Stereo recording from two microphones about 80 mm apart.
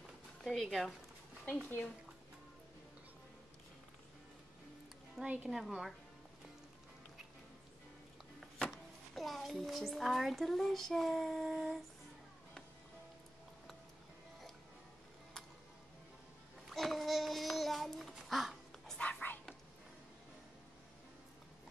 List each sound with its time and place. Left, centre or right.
0.4 s speech: centre
5.1 s a woman's voice: centre
8.4 s a child's voice: centre
16.6 s child singing: centre
18.1 s dog: centre
18.9 s whispering: centre